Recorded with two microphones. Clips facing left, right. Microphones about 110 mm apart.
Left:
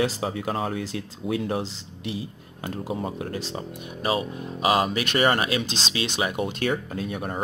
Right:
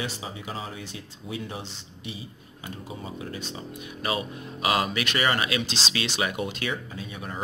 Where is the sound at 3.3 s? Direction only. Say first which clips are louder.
Left 4 dB; 80° left; by 3.9 s 65° left (ahead or behind).